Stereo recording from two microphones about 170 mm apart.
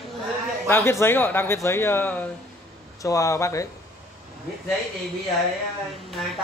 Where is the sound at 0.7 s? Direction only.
15° left (ahead or behind).